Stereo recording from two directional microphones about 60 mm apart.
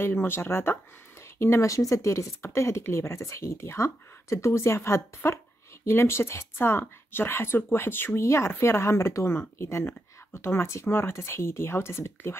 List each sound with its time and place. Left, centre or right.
0.1 s speech: left
1.4 s speech: left
2.0 s speech: left
8.2 s speech: left